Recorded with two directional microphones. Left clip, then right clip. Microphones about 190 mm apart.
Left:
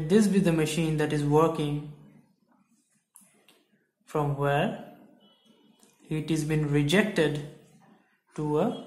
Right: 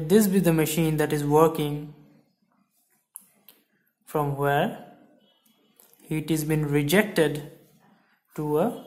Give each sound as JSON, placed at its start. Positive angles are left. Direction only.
{"t": 0.0, "sound": "speech", "side_deg": -30}
{"t": 4.1, "sound": "speech", "side_deg": -25}
{"t": 6.0, "sound": "speech", "side_deg": -25}